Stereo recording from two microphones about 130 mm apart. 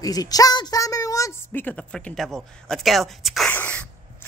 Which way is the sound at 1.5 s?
15° left (ahead or behind).